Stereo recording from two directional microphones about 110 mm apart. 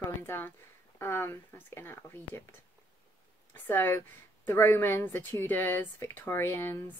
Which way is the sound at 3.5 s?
20° left (ahead or behind).